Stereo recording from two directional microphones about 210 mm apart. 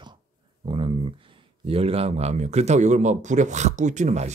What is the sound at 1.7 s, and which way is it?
Speech, 30° right (ahead or behind).